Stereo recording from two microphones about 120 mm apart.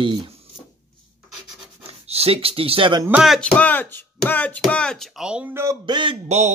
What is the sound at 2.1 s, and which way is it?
Speech, 55° right (ahead or behind).